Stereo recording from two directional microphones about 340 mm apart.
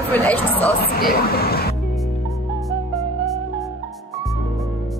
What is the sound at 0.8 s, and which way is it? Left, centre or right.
Speech, left.